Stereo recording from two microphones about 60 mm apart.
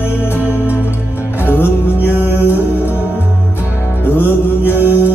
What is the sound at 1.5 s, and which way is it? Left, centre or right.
Music, left.